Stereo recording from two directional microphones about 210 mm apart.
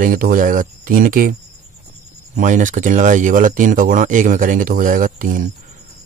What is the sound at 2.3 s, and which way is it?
Speech, 35° right (ahead or behind).